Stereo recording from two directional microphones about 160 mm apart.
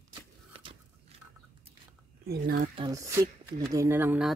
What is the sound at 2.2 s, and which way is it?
Speech, 75° right (ahead or behind).